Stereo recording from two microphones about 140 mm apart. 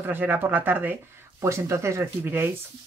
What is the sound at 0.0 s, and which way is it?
Speech, 15° right (ahead or behind).